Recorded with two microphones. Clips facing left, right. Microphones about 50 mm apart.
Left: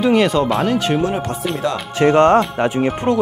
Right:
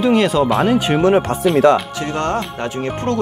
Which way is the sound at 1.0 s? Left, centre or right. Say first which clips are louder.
Right 6 dB; right.